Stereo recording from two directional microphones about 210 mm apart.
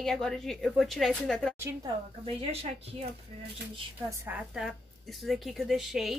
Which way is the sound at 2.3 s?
30° right (ahead or behind).